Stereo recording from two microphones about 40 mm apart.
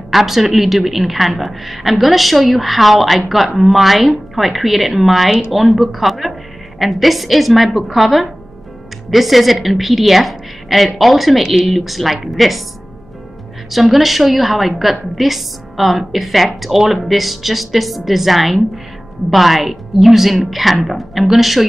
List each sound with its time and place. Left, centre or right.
0.1 s a woman's voice: centre
13.7 s a woman's voice: centre